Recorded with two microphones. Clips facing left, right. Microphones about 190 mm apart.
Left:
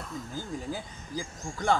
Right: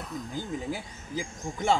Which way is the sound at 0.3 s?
20° right (ahead or behind).